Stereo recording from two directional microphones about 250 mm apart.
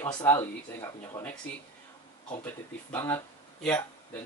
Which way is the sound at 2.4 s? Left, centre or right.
Centre.